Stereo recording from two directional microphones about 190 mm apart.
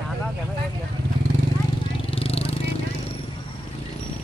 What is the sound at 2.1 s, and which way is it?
Vehicle, 30° left (ahead or behind).